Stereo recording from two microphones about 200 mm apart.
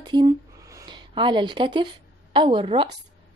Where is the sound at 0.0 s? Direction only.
20° right (ahead or behind).